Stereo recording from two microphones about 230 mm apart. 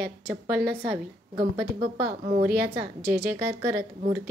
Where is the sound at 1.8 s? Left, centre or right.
Right.